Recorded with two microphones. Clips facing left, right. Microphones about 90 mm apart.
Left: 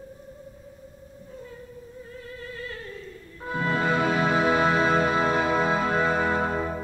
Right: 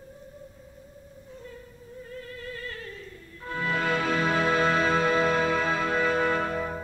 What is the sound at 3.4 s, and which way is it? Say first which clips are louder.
Music: left 3 dB; 20° left (ahead or behind).